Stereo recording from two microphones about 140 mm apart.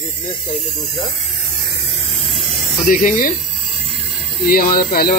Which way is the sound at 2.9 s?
70° left (ahead or behind).